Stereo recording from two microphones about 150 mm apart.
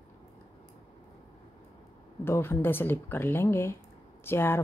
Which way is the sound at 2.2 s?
15° left (ahead or behind).